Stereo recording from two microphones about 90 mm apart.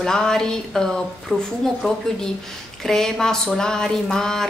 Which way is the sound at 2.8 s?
5° left (ahead or behind).